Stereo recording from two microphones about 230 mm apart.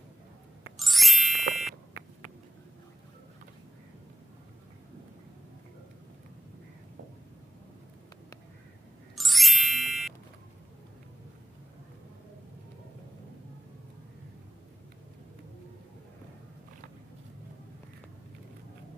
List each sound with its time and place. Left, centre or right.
0.7 s music: centre
1.5 s a sound: centre
9.1 s music: centre